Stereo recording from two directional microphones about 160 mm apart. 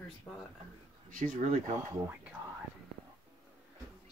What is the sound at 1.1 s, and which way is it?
Speech, 55° right (ahead or behind).